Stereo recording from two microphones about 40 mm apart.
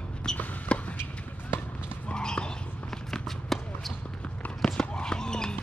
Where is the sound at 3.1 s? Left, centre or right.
Centre.